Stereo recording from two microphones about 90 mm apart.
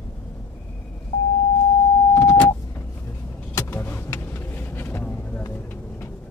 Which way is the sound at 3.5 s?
25° left (ahead or behind).